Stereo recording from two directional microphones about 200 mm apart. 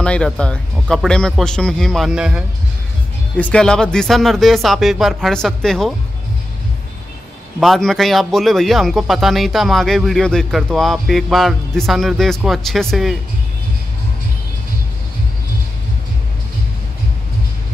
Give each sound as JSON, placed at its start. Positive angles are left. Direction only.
{"t": 0.0, "sound": "speech", "side_deg": 5}
{"t": 7.6, "sound": "speech", "side_deg": 0}